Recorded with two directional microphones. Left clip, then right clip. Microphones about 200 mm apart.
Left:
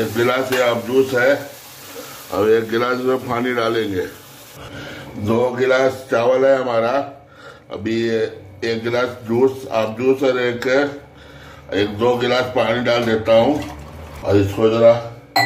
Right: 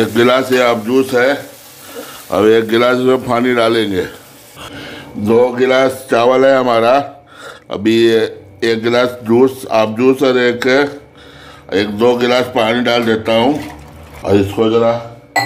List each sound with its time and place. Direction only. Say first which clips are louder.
0.1 s speech: right 6 dB; 55° right (ahead or behind)
2.3 s a man's voice: right 6 dB; 45° right (ahead or behind)
4.7 s speech: right 3 dB; 50° right (ahead or behind)